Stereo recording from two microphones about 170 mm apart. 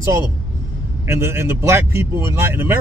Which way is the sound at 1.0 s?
15° right (ahead or behind).